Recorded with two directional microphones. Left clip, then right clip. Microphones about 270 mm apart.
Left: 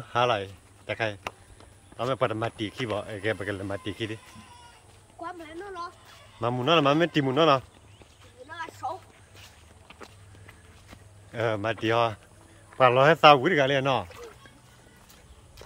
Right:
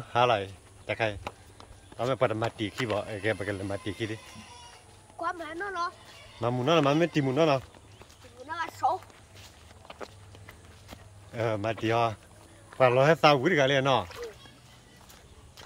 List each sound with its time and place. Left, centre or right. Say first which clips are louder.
0.0 s speech: even; centre
4.4 s music: right 1 dB; right
5.3 s speech: right 5 dB; centre
6.4 s speech: left 2 dB; centre
8.5 s a sound: right 6 dB; centre
9.8 s walk: right 4 dB; right
11.3 s speech: left 2 dB; centre